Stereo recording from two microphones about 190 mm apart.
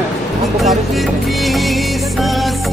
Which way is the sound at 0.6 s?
Centre (ahead or behind).